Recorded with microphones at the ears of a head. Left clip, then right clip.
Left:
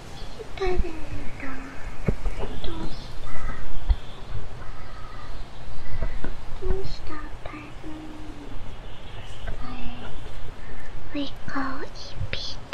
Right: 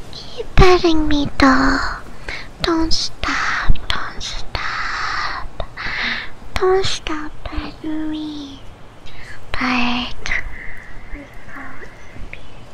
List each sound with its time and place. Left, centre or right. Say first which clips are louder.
0.1 s a child's voice: right 15 dB; right
2.6 s whispering: right 19 dB; right